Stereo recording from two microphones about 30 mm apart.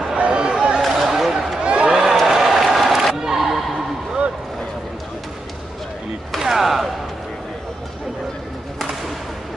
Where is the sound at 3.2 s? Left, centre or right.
Centre.